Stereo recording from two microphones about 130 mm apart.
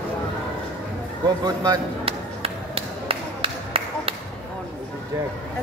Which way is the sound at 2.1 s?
45° right (ahead or behind).